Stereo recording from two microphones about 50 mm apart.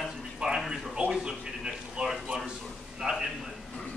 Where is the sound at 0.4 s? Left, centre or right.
Centre.